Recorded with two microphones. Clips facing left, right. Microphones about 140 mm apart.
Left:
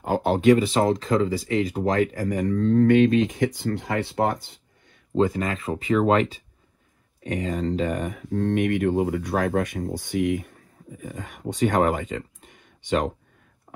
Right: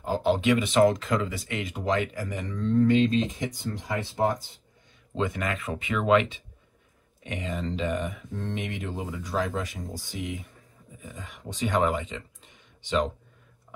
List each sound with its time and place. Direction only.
0.0 s speech: 50° left (ahead or behind)
3.3 s speech: 90° left
5.1 s speech: 35° left (ahead or behind)
13.7 s whispering: 50° left (ahead or behind)